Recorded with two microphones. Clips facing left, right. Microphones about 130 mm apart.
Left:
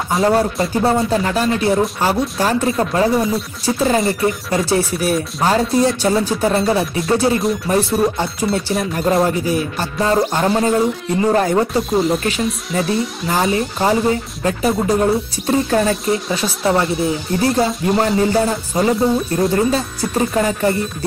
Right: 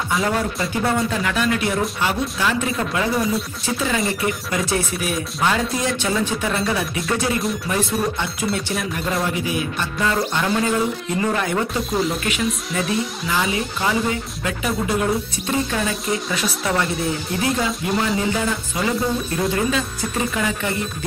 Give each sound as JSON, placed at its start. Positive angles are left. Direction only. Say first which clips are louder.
{"t": 0.1, "sound": "speech", "louder": "left 7 dB", "side_deg": 35}
{"t": 11.9, "sound": "speech", "louder": "left 5 dB", "side_deg": 0}
{"t": 12.2, "sound": "speech", "louder": "left 3 dB", "side_deg": 35}